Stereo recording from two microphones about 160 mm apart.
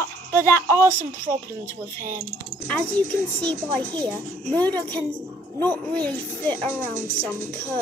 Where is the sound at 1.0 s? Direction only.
55° right (ahead or behind).